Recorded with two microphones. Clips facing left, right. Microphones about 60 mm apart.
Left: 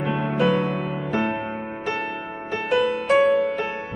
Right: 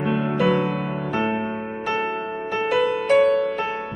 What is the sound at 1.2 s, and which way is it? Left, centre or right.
Music, centre.